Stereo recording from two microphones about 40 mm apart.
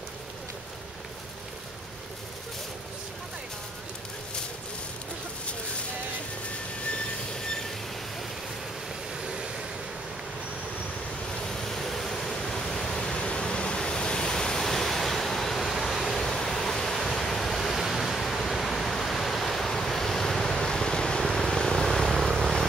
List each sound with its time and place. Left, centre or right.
9.2 s vehicle: centre
11.4 s pink noise: centre
16.2 s waves: centre
19.9 s vehicle: centre
21.9 s vehicle: centre